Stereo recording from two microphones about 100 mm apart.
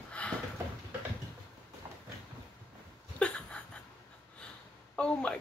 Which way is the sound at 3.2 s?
10° left (ahead or behind).